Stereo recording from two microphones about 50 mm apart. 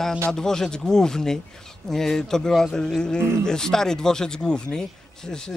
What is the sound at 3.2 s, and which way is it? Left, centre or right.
Speech, right.